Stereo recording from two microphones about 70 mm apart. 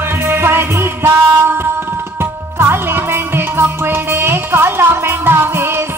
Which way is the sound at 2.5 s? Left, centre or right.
Right.